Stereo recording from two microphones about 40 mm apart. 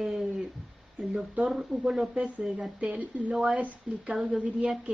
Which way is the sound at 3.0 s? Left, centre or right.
Right.